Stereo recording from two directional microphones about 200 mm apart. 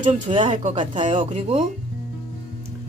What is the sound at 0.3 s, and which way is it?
Speech, 25° right (ahead or behind).